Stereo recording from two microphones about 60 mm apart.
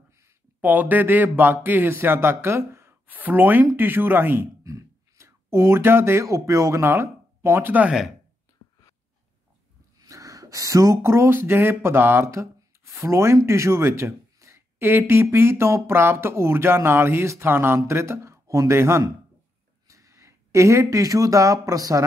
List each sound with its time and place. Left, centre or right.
0.6 s speech: right
3.1 s speech: right
4.6 s a sound: right
6.2 s speech: right
9.9 s a sound: right
11.0 s speech: right
12.3 s a sound: right
13.0 s speech: right
19.9 s speech: right